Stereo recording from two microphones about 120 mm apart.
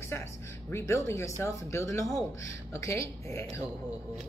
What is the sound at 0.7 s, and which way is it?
A woman's voice, 25° left (ahead or behind).